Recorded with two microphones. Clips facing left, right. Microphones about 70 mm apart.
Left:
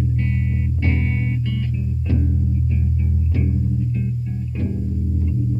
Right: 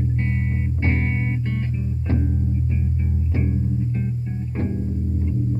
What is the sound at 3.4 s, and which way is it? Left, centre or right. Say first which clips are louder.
Music: left 1 dB; right.